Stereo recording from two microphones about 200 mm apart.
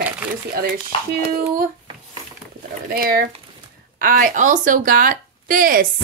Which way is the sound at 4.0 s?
45° right (ahead or behind).